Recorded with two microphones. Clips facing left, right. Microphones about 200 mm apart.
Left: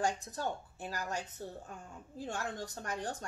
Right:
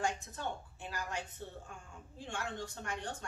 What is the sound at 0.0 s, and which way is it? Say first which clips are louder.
Speech: left 3 dB; 40° left (ahead or behind).